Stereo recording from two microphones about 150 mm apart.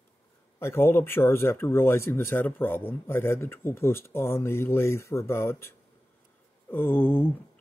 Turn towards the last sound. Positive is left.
turn(degrees=15)  # may be behind; listen again after turning